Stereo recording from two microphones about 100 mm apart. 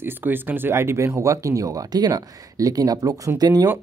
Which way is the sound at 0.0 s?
20° right (ahead or behind).